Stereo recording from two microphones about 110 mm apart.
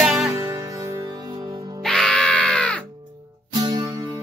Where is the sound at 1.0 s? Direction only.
40° right (ahead or behind).